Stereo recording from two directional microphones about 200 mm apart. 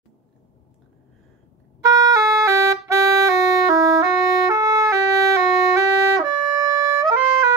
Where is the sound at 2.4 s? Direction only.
15° right (ahead or behind).